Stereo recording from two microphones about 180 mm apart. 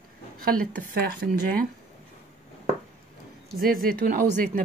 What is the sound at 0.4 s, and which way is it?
Speech, 50° right (ahead or behind).